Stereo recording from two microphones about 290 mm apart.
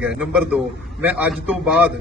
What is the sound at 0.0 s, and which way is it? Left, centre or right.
A man's voice, centre.